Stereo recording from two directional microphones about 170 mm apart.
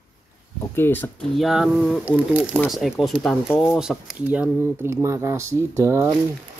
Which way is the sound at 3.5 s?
15° left (ahead or behind).